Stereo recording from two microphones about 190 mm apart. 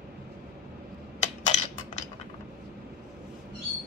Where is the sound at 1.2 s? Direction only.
40° left (ahead or behind).